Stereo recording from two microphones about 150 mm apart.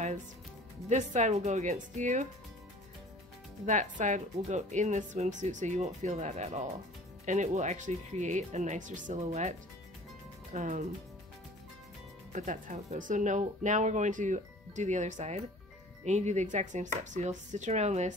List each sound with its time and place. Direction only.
0.8 s speech: 50° right (ahead or behind)
3.6 s speech: 55° right (ahead or behind)
12.3 s speech: 55° right (ahead or behind)